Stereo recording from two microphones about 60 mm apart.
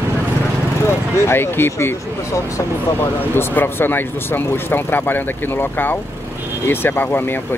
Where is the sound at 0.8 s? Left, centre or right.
Left.